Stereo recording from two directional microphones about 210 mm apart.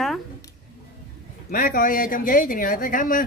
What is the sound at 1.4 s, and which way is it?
Speech, 40° left (ahead or behind).